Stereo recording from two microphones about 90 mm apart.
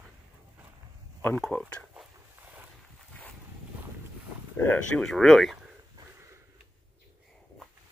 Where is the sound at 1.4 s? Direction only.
5° left (ahead or behind).